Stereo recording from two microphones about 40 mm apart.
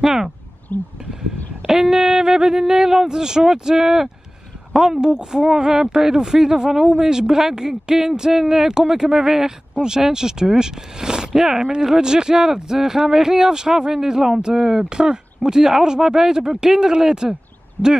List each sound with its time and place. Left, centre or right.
0.0 s speech: centre
0.7 s a sound: left
1.6 s speech: centre
17.8 s speech: left